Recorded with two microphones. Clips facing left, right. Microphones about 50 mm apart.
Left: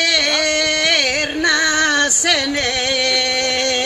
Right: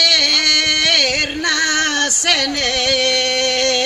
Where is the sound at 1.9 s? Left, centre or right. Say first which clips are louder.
Left 2 dB; left.